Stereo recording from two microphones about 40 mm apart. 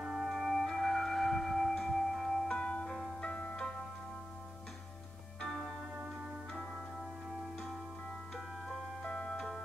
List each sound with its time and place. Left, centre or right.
0.0 s music: centre
0.5 s music: centre
2.4 s music: left
5.4 s music: centre
9.1 s music: centre